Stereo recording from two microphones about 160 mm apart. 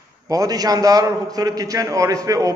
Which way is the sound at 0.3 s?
25° right (ahead or behind).